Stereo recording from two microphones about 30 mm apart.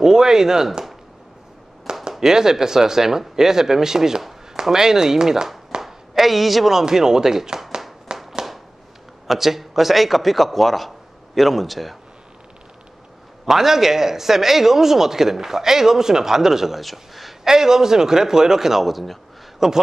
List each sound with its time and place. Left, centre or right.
0.0 s speech: centre
2.1 s speech: centre
5.8 s a sound: centre
6.7 s speech: centre
8.1 s clapping: right
9.3 s a man's voice: centre
13.5 s a man's voice: centre
17.5 s speech: centre
18.9 s a man's voice: centre
19.6 s speech: centre